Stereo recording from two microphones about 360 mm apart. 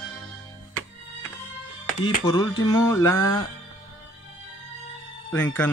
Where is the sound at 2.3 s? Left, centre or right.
Centre.